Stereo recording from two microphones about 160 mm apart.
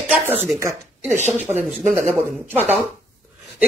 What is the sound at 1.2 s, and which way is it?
Speech, 45° right (ahead or behind).